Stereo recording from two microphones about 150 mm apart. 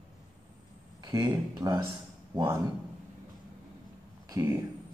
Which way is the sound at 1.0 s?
25° right (ahead or behind).